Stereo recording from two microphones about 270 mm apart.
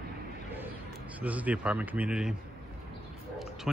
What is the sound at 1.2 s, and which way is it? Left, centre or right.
A man's voice, centre.